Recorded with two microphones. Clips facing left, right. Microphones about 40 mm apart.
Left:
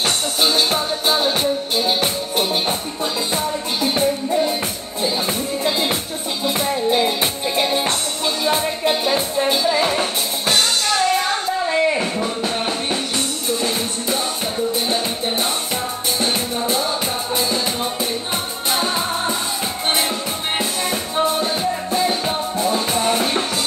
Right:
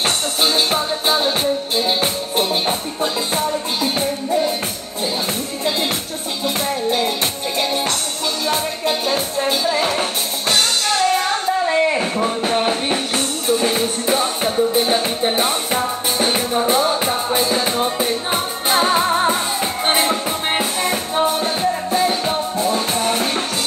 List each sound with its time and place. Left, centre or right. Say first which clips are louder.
0.4 s music: even; centre
5.6 s music: right 1 dB; centre
11.7 s a sound: right 1 dB; centre
12.4 s music: right 4 dB; right
17.4 s music: right 2 dB; right; by 23.4 s centre